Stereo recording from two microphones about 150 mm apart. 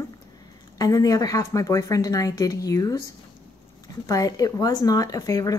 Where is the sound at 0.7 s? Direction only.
25° left (ahead or behind).